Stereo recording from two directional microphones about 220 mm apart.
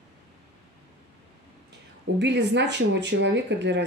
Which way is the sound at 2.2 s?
50° right (ahead or behind).